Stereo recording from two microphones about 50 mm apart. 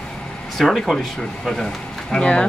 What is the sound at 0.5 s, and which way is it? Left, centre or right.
Speech, centre.